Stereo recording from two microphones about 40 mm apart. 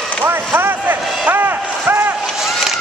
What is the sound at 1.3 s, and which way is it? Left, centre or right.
Vehicle, right.